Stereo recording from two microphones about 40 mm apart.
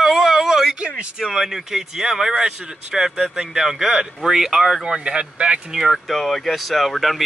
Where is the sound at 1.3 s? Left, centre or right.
Centre.